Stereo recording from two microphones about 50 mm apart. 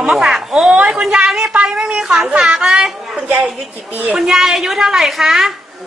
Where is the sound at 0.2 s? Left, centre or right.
Centre.